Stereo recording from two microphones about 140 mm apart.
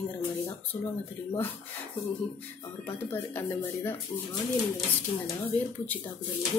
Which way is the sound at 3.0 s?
15° left (ahead or behind).